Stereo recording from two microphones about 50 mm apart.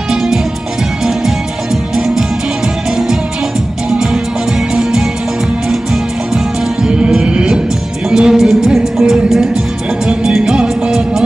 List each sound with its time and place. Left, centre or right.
2.0 s music: centre
6.3 s music: centre